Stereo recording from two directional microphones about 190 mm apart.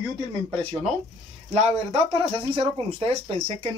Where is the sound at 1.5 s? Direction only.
30° right (ahead or behind).